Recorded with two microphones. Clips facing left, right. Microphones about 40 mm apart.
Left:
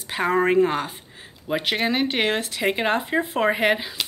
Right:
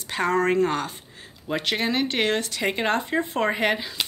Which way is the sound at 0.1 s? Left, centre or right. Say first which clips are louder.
Left 2 dB; centre.